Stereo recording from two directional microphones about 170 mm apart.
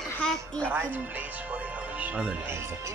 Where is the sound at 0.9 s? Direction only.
10° right (ahead or behind).